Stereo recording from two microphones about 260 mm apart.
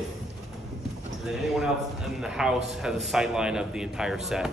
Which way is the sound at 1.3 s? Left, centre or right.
Centre.